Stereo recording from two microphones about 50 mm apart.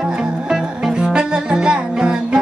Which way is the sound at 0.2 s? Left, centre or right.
Centre.